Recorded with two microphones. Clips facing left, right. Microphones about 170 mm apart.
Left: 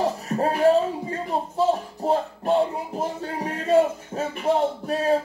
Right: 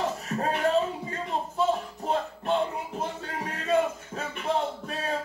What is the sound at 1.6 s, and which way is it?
Music, 35° left (ahead or behind).